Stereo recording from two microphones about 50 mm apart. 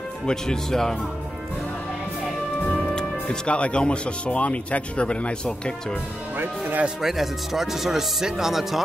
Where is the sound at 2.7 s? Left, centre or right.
Centre.